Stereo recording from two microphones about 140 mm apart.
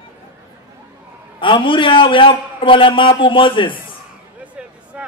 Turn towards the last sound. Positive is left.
turn(degrees=-10)  # may be behind; listen again after turning